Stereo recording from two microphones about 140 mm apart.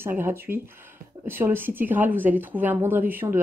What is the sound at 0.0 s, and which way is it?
Speech, 15° right (ahead or behind).